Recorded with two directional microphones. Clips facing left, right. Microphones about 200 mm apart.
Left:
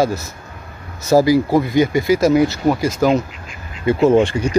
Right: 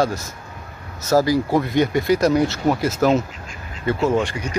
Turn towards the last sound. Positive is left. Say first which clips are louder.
# left 7 dB
turn(degrees=25)  # may be behind; listen again after turning